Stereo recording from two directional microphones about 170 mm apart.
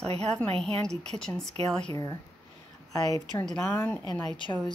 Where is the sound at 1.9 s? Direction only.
20° left (ahead or behind).